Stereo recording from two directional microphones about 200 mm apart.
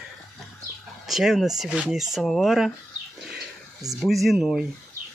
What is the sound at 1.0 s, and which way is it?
Speech, centre (ahead or behind).